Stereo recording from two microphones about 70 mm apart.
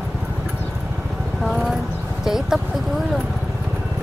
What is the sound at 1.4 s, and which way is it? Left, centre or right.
Speech, centre.